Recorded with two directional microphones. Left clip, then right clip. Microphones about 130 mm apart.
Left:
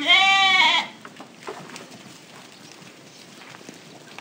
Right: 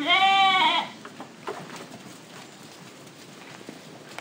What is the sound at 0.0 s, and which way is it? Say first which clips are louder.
Goat: left 3 dB; 35° left (ahead or behind).